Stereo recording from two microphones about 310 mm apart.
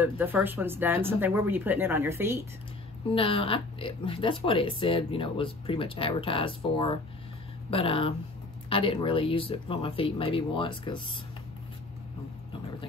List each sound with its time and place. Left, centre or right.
0.0 s speech: centre
3.1 s speech: centre